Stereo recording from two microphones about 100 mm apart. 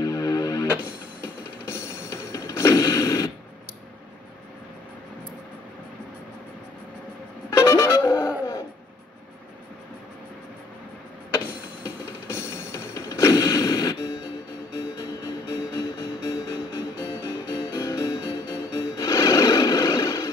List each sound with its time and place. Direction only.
0.0 s music: 40° left (ahead or behind)
1.2 s music: 25° left (ahead or behind)
7.5 s music: 30° left (ahead or behind)
11.3 s music: 30° left (ahead or behind)